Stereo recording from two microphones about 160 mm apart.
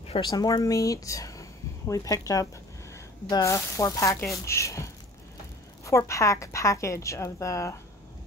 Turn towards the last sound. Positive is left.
turn(degrees=20)  # may be behind; listen again after turning